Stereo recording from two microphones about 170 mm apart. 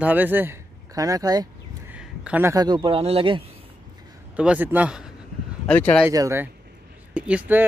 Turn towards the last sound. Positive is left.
turn(degrees=-10)  # may be behind; listen again after turning